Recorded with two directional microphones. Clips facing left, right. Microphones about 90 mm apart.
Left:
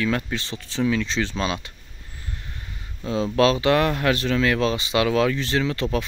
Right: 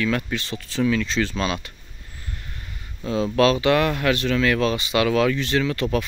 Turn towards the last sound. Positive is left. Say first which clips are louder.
# right 1 dB
turn(degrees=25)  # may be behind; listen again after turning